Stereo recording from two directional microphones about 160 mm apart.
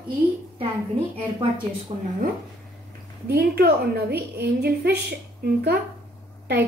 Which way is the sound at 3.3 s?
85° right.